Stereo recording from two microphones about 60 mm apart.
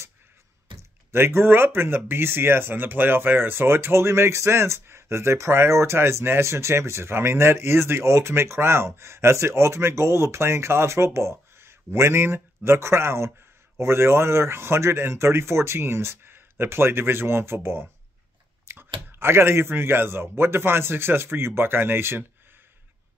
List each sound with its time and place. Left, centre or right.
1.1 s speech: right